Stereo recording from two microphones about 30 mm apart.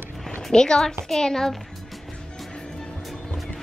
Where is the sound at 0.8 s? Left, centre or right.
Centre.